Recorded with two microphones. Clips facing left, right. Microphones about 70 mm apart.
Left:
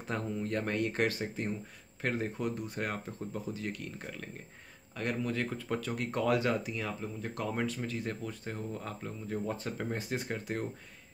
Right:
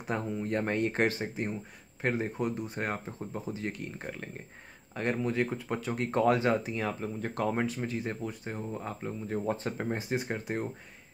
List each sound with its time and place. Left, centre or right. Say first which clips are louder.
0.0 s speech: right 2 dB; centre; by 7.5 s right
7.5 s speech: right 3 dB; right
9.3 s speech: right 3 dB; right